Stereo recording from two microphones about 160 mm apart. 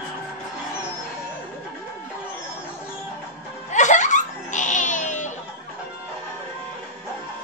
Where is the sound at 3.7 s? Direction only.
50° left (ahead or behind).